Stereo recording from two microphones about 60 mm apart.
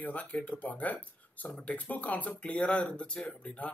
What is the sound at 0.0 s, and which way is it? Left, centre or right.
Speech, left.